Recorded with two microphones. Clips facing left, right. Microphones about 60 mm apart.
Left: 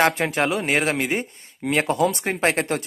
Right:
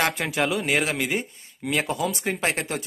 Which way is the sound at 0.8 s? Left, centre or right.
Centre.